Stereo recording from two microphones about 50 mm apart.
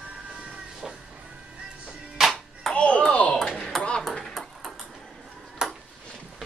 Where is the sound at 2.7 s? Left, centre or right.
Left.